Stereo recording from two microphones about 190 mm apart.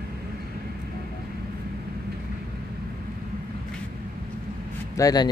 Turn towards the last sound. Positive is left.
turn(degrees=20)  # may be behind; listen again after turning